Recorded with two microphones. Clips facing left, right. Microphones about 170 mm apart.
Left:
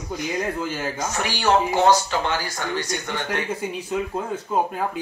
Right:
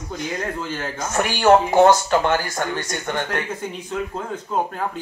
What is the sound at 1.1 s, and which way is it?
Speech, 50° right (ahead or behind).